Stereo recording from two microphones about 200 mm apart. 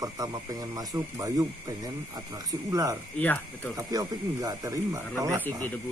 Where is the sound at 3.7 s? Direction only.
15° right (ahead or behind).